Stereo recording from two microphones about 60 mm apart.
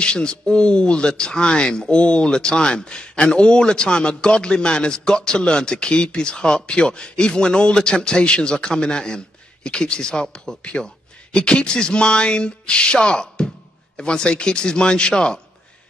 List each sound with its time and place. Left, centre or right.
0.0 s speech: centre